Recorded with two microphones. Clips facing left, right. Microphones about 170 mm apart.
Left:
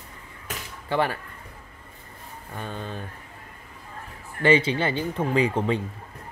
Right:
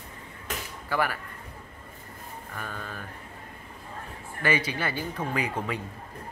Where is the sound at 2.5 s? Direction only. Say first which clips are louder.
Left 5 dB; 25° left (ahead or behind).